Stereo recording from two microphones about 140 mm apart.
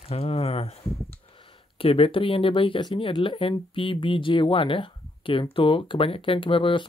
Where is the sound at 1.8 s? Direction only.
40° left (ahead or behind).